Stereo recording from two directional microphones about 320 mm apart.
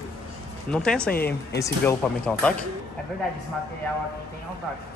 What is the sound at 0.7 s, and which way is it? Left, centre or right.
Speech, centre.